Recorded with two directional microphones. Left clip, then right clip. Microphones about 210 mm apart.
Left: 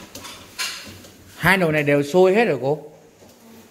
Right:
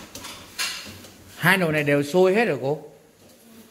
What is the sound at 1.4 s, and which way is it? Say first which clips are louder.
Speech: left 2 dB; 10° left (ahead or behind).